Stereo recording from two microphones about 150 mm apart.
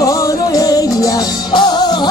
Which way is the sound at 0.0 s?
25° left (ahead or behind).